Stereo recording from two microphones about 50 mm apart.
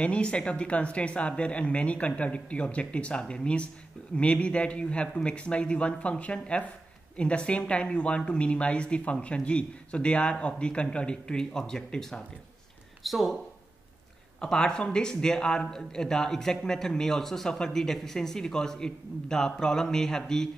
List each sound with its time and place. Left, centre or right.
0.0 s a man's voice: left
13.0 s speech: centre
14.4 s a man's voice: centre